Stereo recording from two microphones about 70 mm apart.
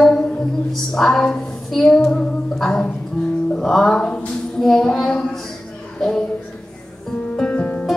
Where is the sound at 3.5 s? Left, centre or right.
Centre.